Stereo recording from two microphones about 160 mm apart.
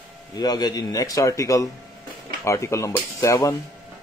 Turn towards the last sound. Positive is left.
turn(degrees=20)  # may be behind; listen again after turning